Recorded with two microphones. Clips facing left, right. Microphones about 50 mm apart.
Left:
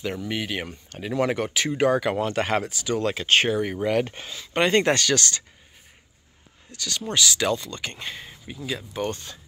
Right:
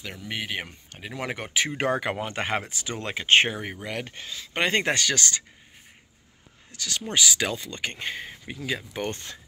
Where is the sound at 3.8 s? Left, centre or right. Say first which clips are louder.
Left 10 dB; centre.